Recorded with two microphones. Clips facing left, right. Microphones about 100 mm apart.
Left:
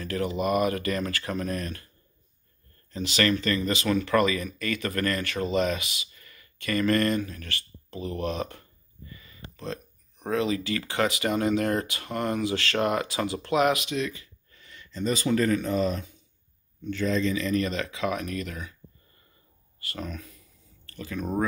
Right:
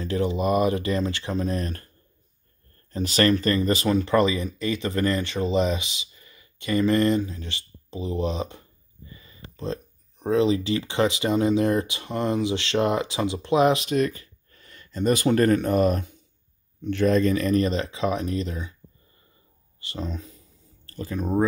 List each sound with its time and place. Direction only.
0.0 s speech: 25° right (ahead or behind)
2.9 s speech: 40° right (ahead or behind)
13.8 s speech: 45° right (ahead or behind)
17.6 s speech: 35° right (ahead or behind)
19.8 s a sound: 25° right (ahead or behind)